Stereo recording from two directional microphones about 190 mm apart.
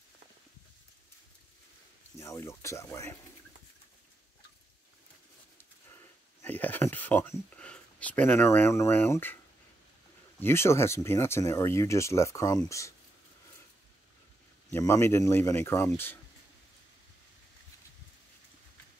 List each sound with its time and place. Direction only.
2.1 s speech: 15° left (ahead or behind)
6.4 s speech: 10° left (ahead or behind)
10.4 s speech: 15° left (ahead or behind)
14.7 s speech: 15° left (ahead or behind)